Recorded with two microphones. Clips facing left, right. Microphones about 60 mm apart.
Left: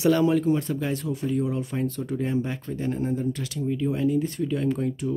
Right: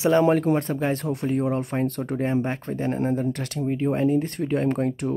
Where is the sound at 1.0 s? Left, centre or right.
Right.